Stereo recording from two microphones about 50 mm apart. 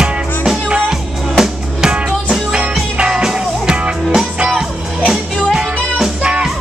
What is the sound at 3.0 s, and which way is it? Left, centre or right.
Music, centre.